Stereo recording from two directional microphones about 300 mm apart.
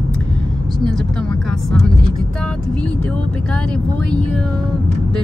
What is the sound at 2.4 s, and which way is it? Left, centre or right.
Speech, centre.